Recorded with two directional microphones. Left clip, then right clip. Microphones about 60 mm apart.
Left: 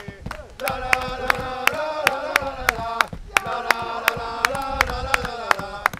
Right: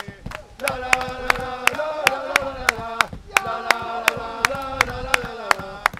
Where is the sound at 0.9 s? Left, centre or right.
Right.